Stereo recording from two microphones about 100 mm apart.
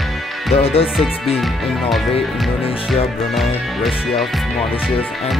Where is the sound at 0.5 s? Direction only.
90° left.